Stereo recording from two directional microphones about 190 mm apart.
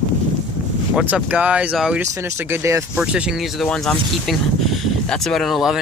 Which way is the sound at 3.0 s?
5° right (ahead or behind).